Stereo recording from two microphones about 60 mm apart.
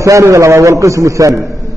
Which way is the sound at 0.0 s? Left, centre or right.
Right.